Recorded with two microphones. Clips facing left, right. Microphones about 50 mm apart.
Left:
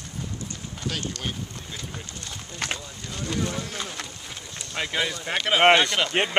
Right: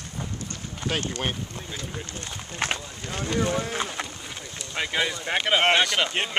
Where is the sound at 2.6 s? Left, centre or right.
Right.